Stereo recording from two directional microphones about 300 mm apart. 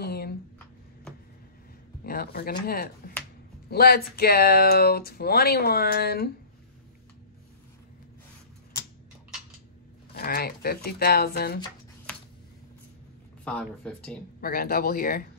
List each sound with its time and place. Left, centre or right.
0.0 s a sound: left
2.0 s speech: left
10.1 s speech: left
13.4 s speech: centre
14.4 s speech: left